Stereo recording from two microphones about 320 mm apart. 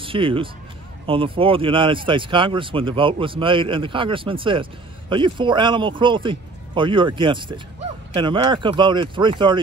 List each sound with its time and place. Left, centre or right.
0.0 s speech: centre